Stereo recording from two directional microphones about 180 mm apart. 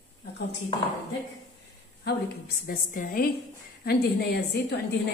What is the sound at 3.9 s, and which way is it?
Speech, 60° left (ahead or behind).